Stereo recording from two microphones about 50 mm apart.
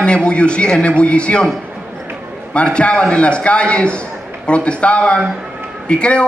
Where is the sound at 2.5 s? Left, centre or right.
Left.